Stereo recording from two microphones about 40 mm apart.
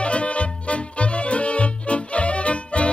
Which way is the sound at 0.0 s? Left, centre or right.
Left.